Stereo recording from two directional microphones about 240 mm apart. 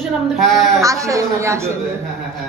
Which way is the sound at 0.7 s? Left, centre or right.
Centre.